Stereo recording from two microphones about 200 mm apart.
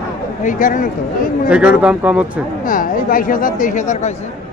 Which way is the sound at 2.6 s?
45° left (ahead or behind).